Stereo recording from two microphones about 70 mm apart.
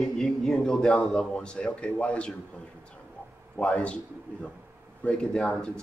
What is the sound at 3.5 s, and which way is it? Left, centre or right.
Speech, centre.